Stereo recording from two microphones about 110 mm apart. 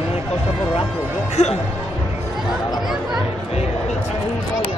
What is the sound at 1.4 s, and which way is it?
Speech, 80° left.